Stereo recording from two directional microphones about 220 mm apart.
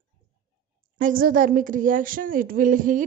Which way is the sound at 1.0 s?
40° right (ahead or behind).